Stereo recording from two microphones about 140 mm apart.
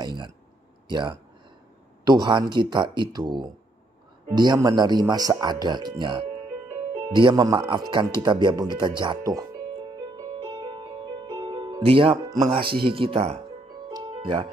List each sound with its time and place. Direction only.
0.0 s speech: 30° right (ahead or behind)
9.9 s music: 35° right (ahead or behind)
12.3 s speech: 30° right (ahead or behind)
13.8 s music: 35° right (ahead or behind)